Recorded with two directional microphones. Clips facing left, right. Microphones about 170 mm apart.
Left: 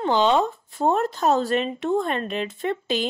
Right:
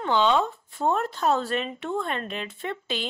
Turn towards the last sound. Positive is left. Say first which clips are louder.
# left 6 dB
turn(degrees=40)  # may be behind; listen again after turning